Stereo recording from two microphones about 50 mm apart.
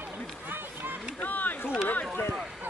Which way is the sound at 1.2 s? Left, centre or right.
Left.